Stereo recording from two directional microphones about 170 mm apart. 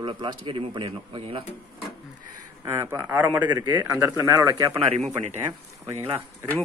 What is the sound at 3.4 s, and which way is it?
Speech, 25° right (ahead or behind).